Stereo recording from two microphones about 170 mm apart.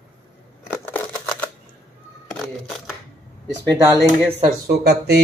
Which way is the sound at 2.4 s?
Centre (ahead or behind).